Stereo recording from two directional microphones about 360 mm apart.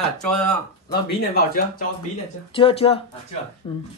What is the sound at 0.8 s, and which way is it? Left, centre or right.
Speech, left.